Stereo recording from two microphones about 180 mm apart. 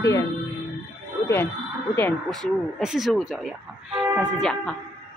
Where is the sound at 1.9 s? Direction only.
10° left (ahead or behind).